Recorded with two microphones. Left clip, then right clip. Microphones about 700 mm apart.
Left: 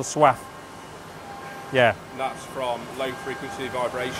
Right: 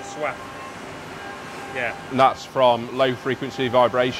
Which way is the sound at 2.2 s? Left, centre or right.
Right.